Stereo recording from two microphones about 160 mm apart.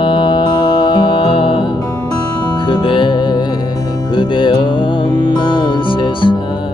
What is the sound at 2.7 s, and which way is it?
Music, 30° left (ahead or behind).